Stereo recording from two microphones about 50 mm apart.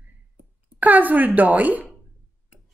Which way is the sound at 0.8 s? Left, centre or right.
Right.